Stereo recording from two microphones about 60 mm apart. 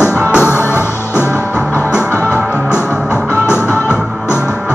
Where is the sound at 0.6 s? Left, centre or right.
Left.